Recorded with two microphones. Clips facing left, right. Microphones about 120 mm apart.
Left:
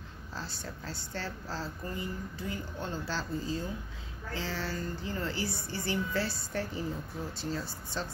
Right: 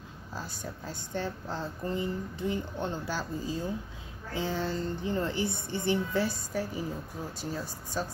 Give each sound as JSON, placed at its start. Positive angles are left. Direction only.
{"t": 0.4, "sound": "a woman's voice", "side_deg": -15}